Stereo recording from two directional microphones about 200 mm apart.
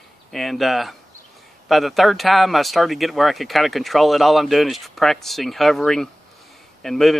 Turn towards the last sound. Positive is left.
turn(degrees=0)  # may be behind; listen again after turning